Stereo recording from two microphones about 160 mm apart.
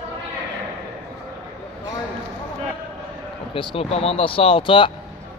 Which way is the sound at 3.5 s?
35° left (ahead or behind).